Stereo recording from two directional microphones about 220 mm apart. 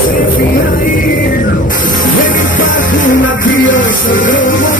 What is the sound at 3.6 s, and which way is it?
Music, 60° left (ahead or behind).